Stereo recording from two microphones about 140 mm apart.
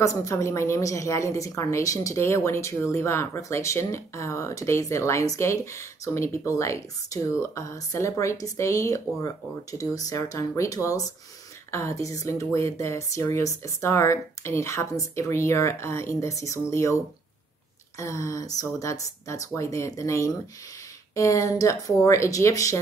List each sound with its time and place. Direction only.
0.0 s a woman's voice: 20° left (ahead or behind)